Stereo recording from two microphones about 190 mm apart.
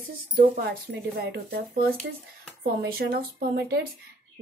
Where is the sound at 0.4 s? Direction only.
55° right (ahead or behind).